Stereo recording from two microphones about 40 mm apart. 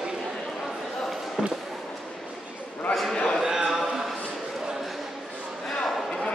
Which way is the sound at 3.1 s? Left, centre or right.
Left.